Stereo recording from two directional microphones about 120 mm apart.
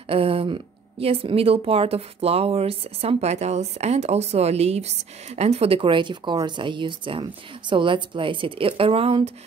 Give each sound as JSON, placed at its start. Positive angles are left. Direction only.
{"t": 0.1, "sound": "a woman's voice", "side_deg": -55}